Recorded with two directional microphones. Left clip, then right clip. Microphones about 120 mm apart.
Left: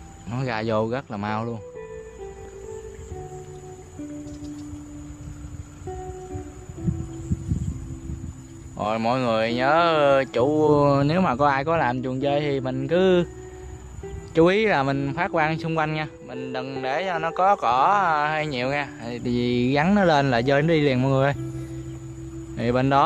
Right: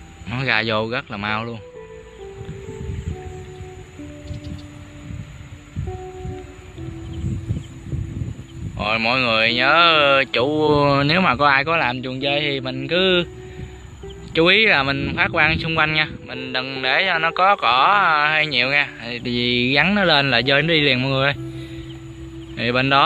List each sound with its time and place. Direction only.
0.3 s speech: 15° left (ahead or behind); by 1.6 s 35° left (ahead or behind)
8.7 s speech: 40° left (ahead or behind)
11.8 s a man's voice: 50° left (ahead or behind)
14.3 s speech: 35° left (ahead or behind)
15.8 s a man's voice: 15° left (ahead or behind); by 21.4 s 40° left (ahead or behind)
22.6 s speech: 30° left (ahead or behind)